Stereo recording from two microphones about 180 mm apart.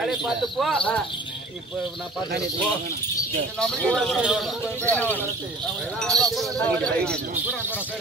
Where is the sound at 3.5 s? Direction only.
5° left (ahead or behind).